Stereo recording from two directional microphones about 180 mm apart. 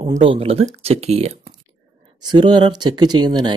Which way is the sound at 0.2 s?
30° right (ahead or behind).